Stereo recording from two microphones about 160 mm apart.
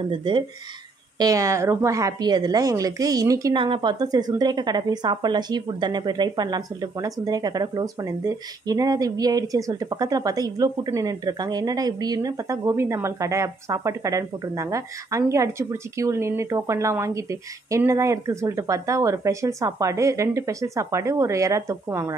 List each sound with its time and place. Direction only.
0.2 s a woman's voice: 30° right (ahead or behind)